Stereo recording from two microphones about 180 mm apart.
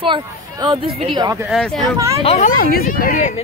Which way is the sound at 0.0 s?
25° right (ahead or behind).